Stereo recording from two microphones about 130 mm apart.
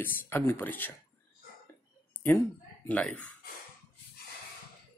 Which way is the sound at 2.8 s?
10° left (ahead or behind).